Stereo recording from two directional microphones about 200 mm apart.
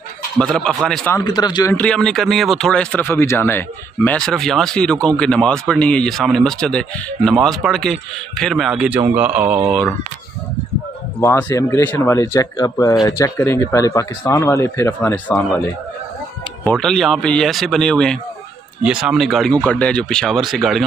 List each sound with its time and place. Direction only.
0.4 s speech: 5° left (ahead or behind)
1.1 s speech: 20° left (ahead or behind)
1.8 s speech: 5° left (ahead or behind)
9.7 s speech: 5° left (ahead or behind)
11.1 s speech: 10° left (ahead or behind)